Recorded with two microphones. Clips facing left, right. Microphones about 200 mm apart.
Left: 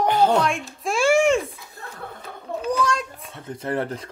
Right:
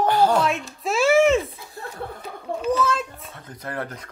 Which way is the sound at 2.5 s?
Centre (ahead or behind).